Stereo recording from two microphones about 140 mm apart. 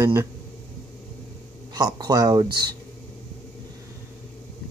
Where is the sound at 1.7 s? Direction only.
30° right (ahead or behind).